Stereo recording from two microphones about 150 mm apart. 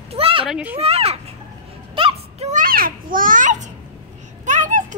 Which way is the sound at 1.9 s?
35° right (ahead or behind).